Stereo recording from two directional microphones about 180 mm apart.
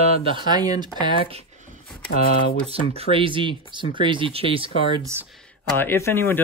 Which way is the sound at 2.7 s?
35° right (ahead or behind).